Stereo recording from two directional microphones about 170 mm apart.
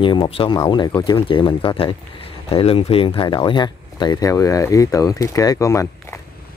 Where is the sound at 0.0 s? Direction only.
30° left (ahead or behind).